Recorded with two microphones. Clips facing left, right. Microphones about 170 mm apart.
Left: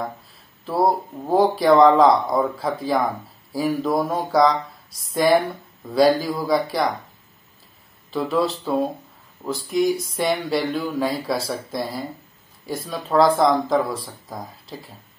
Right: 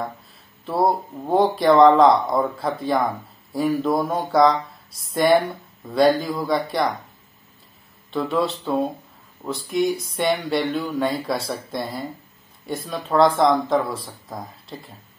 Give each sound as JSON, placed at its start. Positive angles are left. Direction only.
{"t": 0.7, "sound": "speech", "side_deg": 0}
{"t": 8.1, "sound": "speech", "side_deg": 0}